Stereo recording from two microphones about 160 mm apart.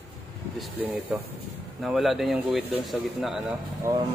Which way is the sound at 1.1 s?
5° right (ahead or behind).